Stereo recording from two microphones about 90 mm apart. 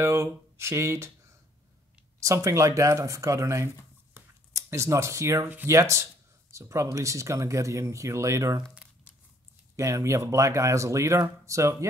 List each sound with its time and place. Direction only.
0.0 s speech: 30° right (ahead or behind)
2.1 s speech: 35° right (ahead or behind)
9.8 s speech: 35° right (ahead or behind)